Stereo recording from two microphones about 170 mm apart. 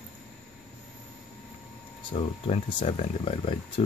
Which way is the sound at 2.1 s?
35° left (ahead or behind).